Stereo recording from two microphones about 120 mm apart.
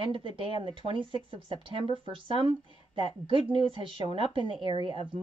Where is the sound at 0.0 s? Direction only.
45° right (ahead or behind).